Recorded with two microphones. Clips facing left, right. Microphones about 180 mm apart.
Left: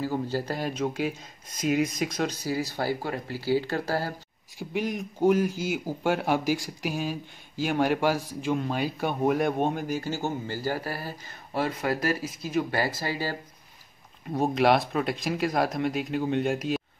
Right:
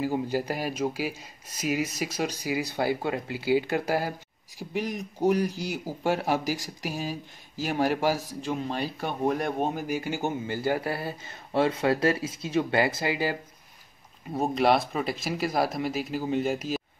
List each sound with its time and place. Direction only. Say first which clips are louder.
0.0 s speech: right 1 dB; 15° right (ahead or behind)
4.6 s speech: left 1 dB; centre (ahead or behind); by 13.4 s 15° right (ahead or behind)
14.3 s speech: left 1 dB; centre (ahead or behind)